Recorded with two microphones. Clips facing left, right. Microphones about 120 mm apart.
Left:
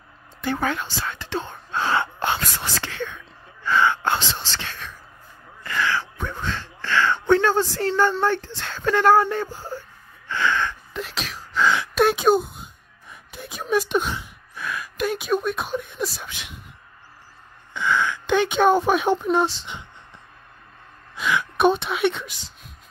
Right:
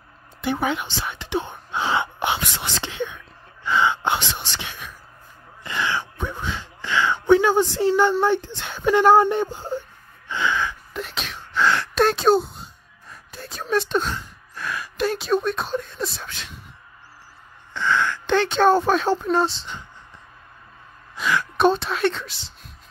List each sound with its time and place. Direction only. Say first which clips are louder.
0.4 s speech: right 1 dB; 15° right (ahead or behind)
5.6 s gasp: left 1 dB; 20° right (ahead or behind)
7.8 s speech: right 2 dB; 10° right (ahead or behind); by 12.4 s 10° left (ahead or behind)
13.1 s gasp: even; 15° left (ahead or behind)
14.6 s a sound: right 1 dB; centre (ahead or behind)
15.0 s speech: right 1 dB; 10° left (ahead or behind)
17.7 s speech: right 1 dB; 10° left (ahead or behind)
21.2 s a sound: even; centre (ahead or behind)
21.5 s speech: even; 15° left (ahead or behind)